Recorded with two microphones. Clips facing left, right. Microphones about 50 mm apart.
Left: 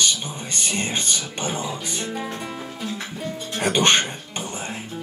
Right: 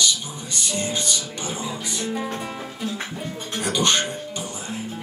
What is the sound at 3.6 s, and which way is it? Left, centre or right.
Music, left.